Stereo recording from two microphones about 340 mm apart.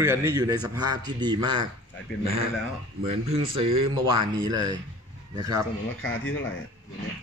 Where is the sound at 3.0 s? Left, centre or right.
Centre.